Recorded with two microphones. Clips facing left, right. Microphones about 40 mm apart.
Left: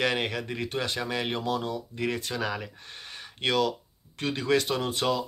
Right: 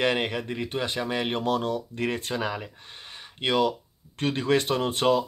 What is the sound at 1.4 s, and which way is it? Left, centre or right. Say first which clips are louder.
Speech: right 4 dB; right.